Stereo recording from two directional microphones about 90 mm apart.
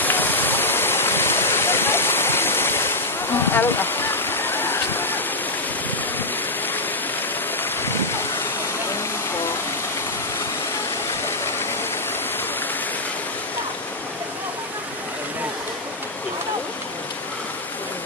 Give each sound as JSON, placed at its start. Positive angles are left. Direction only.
{"t": 0.0, "sound": "waterfall", "side_deg": 20}
{"t": 7.8, "sound": "rain", "side_deg": 25}